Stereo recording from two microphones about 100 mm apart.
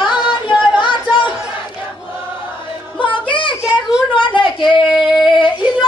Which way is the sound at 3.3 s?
55° left (ahead or behind).